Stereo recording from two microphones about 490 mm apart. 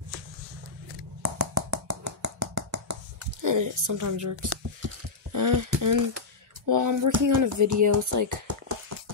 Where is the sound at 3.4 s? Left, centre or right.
Right.